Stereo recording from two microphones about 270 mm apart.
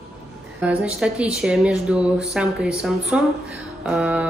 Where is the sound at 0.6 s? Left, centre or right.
Centre.